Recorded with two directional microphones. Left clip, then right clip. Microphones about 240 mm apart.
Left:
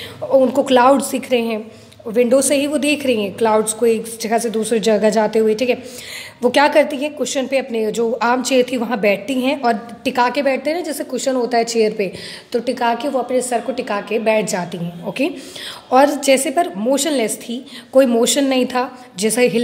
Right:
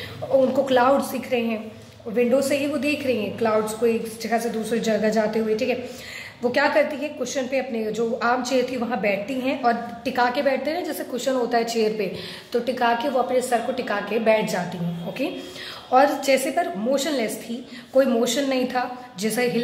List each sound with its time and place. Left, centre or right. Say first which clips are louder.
0.5 s a woman's voice: left 6 dB; left